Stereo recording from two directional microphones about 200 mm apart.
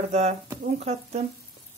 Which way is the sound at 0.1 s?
30° right (ahead or behind).